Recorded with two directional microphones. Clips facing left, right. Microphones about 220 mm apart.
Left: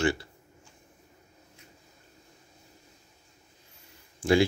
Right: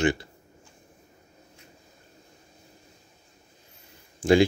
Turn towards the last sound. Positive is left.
turn(degrees=-20)  # may be behind; listen again after turning